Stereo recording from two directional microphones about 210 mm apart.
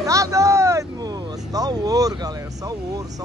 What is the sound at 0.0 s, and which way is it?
Hubbub, 15° right (ahead or behind).